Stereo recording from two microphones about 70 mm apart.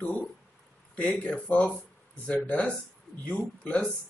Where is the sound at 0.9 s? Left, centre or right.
Centre.